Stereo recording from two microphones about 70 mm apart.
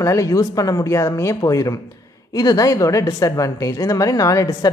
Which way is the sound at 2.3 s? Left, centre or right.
Left.